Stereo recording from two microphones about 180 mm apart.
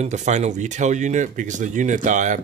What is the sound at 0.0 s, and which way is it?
Speech, 40° right (ahead or behind).